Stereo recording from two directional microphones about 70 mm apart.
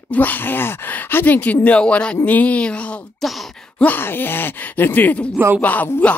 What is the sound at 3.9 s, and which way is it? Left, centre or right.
Speech, left.